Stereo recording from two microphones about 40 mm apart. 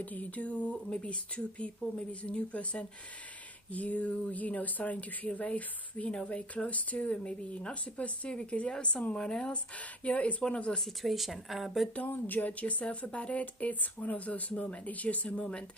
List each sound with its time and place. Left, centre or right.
0.0 s speech: left
6.0 s speech: left
9.5 s speech: left
10.8 s speech: centre
12.1 s speech: left
12.5 s speech: left